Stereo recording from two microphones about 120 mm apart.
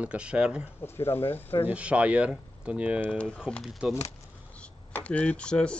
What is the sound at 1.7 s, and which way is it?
Speech, 10° right (ahead or behind).